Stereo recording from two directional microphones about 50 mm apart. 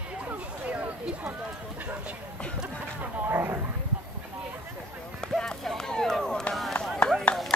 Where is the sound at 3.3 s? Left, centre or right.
Right.